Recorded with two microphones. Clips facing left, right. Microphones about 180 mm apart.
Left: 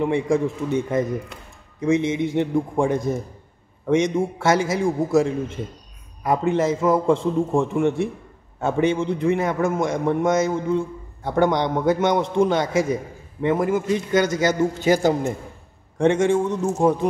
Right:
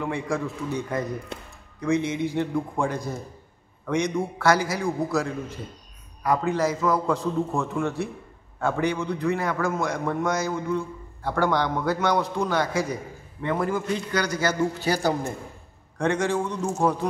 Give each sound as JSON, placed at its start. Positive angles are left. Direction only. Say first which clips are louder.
{"t": 0.0, "sound": "a man's voice", "louder": "left 7 dB", "side_deg": 25}